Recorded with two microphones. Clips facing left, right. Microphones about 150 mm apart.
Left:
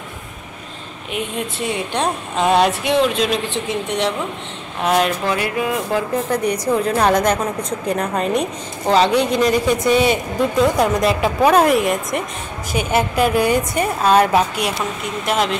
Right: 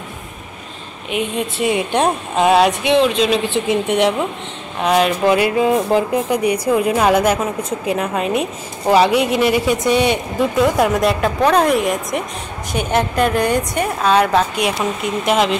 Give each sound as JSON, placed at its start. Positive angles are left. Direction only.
{"t": 1.1, "sound": "a woman's voice", "side_deg": -10}
{"t": 5.2, "sound": "speech", "side_deg": -20}
{"t": 6.3, "sound": "a woman's voice", "side_deg": -10}